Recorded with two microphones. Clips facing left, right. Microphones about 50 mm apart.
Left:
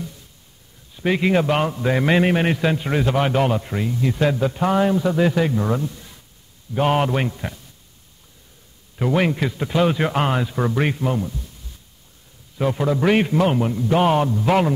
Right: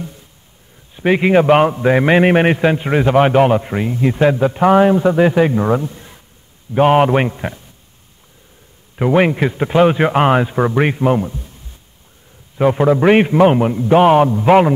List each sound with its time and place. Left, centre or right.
0.9 s a man's voice: right
8.9 s a man's voice: right
12.5 s a man's voice: right